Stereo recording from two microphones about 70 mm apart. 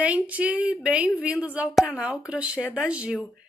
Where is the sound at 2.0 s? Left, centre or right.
Centre.